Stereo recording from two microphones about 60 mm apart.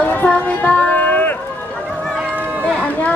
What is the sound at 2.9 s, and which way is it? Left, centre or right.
Chatter, left.